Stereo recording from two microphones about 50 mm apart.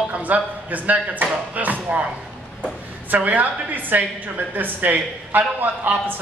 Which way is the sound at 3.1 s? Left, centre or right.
Right.